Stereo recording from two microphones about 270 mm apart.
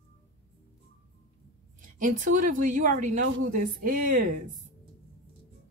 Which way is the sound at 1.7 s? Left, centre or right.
Right.